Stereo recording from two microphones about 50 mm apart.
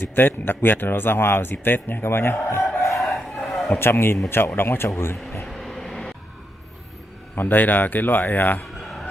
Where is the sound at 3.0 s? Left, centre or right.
Centre.